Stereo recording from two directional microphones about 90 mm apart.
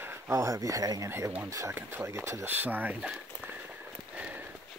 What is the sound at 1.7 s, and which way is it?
Speech, 25° right (ahead or behind).